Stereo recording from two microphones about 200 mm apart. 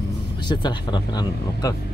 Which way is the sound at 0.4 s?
20° left (ahead or behind).